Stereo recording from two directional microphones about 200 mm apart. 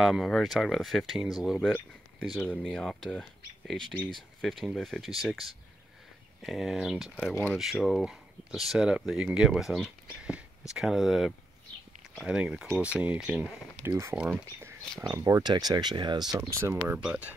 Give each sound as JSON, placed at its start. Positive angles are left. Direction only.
{"t": 0.0, "sound": "speech", "side_deg": 0}
{"t": 7.2, "sound": "speech", "side_deg": 10}
{"t": 16.8, "sound": "speech", "side_deg": -10}